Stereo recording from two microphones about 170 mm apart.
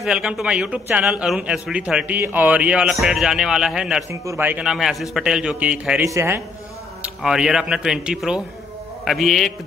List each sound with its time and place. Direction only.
0.0 s a man's voice: 5° right (ahead or behind)
4.1 s a man's voice: 15° right (ahead or behind)
7.0 s a man's voice: 5° right (ahead or behind)